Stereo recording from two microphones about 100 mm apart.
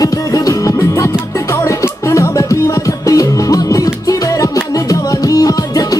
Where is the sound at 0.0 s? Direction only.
35° left (ahead or behind).